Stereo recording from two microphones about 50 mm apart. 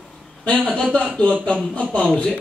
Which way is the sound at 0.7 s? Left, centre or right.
Left.